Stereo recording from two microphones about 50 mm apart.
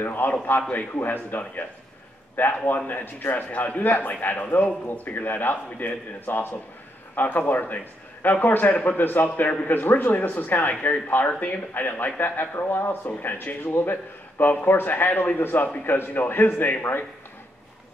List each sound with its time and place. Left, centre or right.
0.0 s a man's voice: left